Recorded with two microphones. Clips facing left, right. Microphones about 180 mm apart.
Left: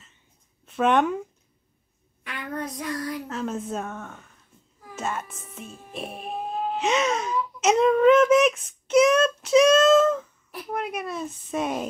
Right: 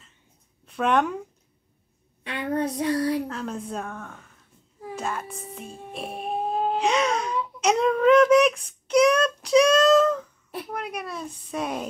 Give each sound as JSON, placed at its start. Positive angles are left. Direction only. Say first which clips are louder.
{"t": 0.7, "sound": "speech", "louder": "left 2 dB", "side_deg": 0}
{"t": 2.2, "sound": "a sound", "louder": "right 6 dB", "side_deg": -30}
{"t": 2.7, "sound": "child singing", "louder": "right 7 dB", "side_deg": -30}
{"t": 3.3, "sound": "a child's voice", "louder": "left 2 dB", "side_deg": 5}
{"t": 5.7, "sound": "music", "louder": "right 4 dB", "side_deg": -30}
{"t": 5.9, "sound": "music", "louder": "right 2 dB", "side_deg": 0}
{"t": 6.3, "sound": "wail", "louder": "right 4 dB", "side_deg": -30}
{"t": 6.8, "sound": "a sound", "louder": "left 2 dB", "side_deg": 5}
{"t": 7.6, "sound": "a child's voice", "louder": "left 2 dB", "side_deg": 5}